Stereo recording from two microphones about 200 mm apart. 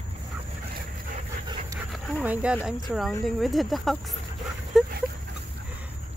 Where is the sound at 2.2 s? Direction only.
5° right (ahead or behind).